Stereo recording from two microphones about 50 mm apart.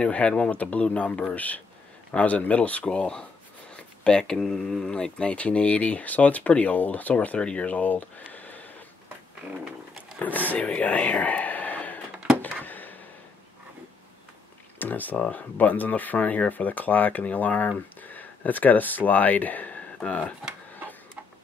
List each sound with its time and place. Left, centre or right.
0.0 s speech: left
10.5 s speech: left
12.6 s a sound: left
14.8 s speech: left